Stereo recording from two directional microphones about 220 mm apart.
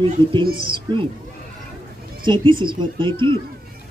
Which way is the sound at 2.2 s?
20° right (ahead or behind).